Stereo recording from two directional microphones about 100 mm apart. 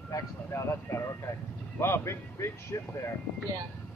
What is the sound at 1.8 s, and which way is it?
Speech, 25° left (ahead or behind).